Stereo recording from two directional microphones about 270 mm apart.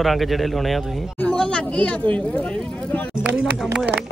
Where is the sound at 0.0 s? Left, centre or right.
Centre.